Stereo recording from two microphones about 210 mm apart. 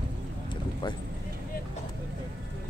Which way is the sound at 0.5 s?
20° left (ahead or behind).